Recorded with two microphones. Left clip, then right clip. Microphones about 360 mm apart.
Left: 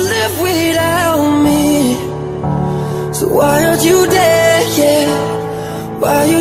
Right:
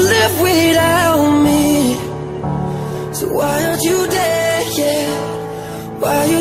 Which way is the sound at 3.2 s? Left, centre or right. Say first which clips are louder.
Left 6 dB; left.